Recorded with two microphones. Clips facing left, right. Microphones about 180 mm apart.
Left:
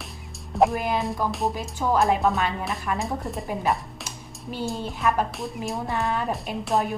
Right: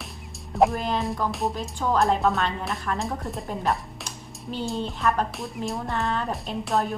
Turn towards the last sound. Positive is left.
turn(degrees=0)  # may be behind; listen again after turning